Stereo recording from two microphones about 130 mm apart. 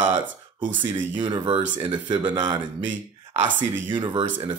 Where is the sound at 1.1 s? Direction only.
35° right (ahead or behind).